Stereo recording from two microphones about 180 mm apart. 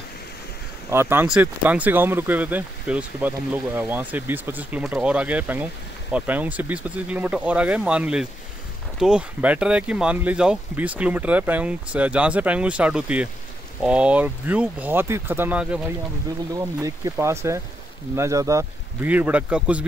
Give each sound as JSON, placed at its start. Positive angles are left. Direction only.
{"t": 0.8, "sound": "speech", "side_deg": -15}
{"t": 16.5, "sound": "speech", "side_deg": -20}